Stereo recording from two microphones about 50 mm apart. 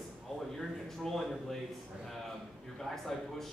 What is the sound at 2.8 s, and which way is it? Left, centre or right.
Speech, centre.